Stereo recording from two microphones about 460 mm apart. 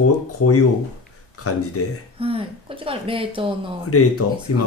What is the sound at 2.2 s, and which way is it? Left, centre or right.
Speech, centre.